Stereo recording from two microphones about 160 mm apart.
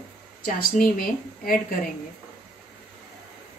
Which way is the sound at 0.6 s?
60° left (ahead or behind).